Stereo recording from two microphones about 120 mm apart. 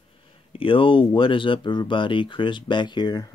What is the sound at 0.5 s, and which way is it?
Speech, 50° left (ahead or behind).